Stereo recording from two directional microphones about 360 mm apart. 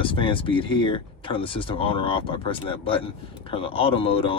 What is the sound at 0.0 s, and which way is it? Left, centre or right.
Speech, centre.